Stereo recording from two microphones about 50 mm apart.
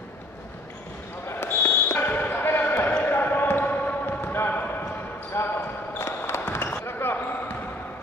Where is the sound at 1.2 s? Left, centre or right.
Left.